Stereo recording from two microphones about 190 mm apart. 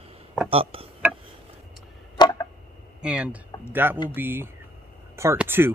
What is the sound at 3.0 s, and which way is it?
Speech, 5° right (ahead or behind).